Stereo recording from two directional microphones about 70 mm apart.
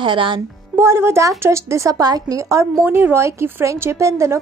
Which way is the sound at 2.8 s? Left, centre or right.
Right.